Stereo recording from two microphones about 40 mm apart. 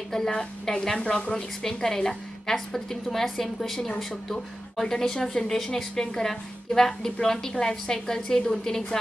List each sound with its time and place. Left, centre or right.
0.1 s a woman's voice: centre